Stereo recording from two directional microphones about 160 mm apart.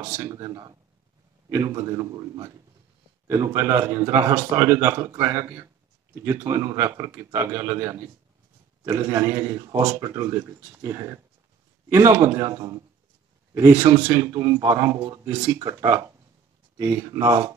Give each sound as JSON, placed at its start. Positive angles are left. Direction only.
{"t": 0.0, "sound": "a man's voice", "side_deg": -20}